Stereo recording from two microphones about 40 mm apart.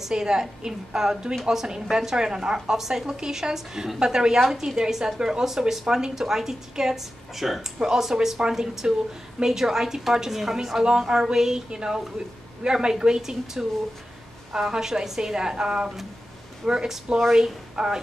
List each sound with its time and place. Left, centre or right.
0.1 s speech: centre
10.8 s speech: right